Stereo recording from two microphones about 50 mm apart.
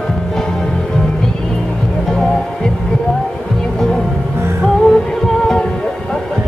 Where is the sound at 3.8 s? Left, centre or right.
Centre.